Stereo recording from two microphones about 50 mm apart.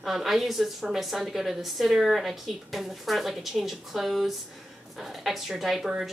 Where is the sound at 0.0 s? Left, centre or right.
Centre.